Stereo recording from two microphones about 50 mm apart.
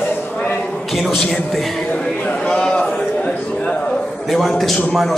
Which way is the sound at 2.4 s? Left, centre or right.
Centre.